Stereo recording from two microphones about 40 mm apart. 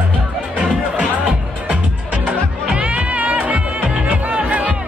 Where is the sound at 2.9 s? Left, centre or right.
Right.